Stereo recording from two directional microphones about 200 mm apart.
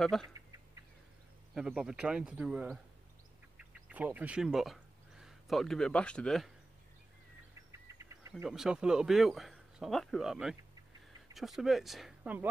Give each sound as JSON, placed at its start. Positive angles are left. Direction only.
{"t": 0.0, "sound": "speech", "side_deg": 0}
{"t": 0.3, "sound": "duck", "side_deg": -15}
{"t": 1.5, "sound": "speech", "side_deg": 0}
{"t": 7.7, "sound": "bird", "side_deg": -15}
{"t": 8.5, "sound": "speech", "side_deg": -5}